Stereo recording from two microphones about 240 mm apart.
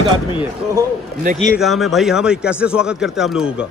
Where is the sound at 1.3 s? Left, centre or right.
Right.